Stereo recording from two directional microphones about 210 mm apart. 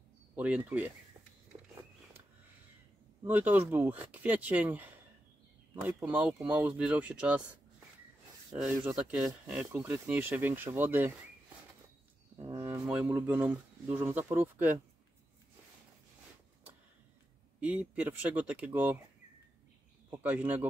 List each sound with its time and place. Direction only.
0.4 s speech: 10° right (ahead or behind)
1.5 s a sound: 30° right (ahead or behind)
3.3 s speech: 10° right (ahead or behind)
8.5 s speech: 10° right (ahead or behind)
17.6 s speech: 5° right (ahead or behind)
20.1 s speech: 10° right (ahead or behind)